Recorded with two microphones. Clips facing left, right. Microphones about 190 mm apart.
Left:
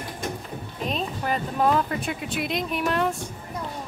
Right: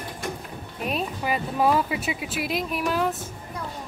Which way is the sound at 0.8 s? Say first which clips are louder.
Right 1 dB; 10° right (ahead or behind).